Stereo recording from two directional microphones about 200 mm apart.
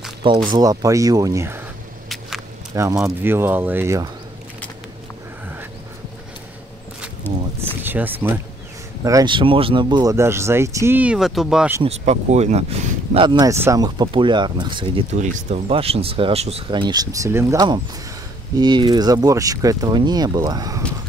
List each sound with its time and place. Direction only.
0.5 s speech: 20° right (ahead or behind)
2.0 s a sound: centre (ahead or behind)
2.7 s speech: 15° right (ahead or behind)
7.3 s speech: 10° left (ahead or behind)
7.8 s speech: 10° right (ahead or behind)
9.0 s speech: 20° right (ahead or behind)
12.0 s speech: 35° right (ahead or behind); by 20.8 s 20° right (ahead or behind)